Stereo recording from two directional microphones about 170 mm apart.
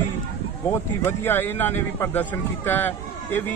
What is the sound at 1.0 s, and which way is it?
Speech, 15° left (ahead or behind).